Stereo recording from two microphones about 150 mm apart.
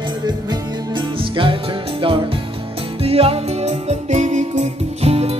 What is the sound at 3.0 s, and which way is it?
Music, 40° right (ahead or behind).